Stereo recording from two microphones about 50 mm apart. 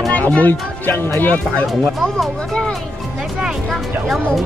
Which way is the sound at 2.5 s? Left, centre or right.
Centre.